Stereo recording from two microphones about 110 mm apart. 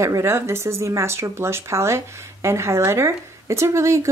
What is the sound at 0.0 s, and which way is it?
Speech, 25° right (ahead or behind).